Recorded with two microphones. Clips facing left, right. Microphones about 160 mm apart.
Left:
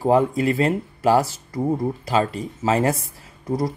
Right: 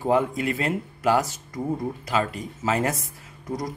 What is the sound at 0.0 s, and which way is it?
Speech, 35° left (ahead or behind).